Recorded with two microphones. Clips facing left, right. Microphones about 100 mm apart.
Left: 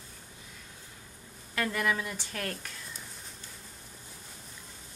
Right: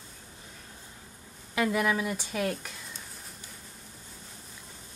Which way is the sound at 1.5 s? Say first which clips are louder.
Right 4 dB; 15° right (ahead or behind).